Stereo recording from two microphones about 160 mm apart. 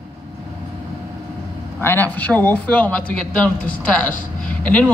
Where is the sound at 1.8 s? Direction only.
15° left (ahead or behind).